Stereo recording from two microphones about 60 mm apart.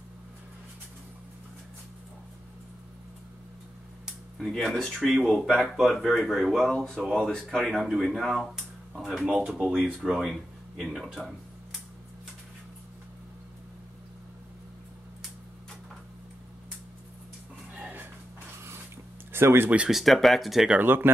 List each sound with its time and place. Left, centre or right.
4.5 s speech: centre
9.2 s speech: right
10.1 s speech: centre
19.3 s speech: right
19.9 s speech: centre
20.8 s speech: right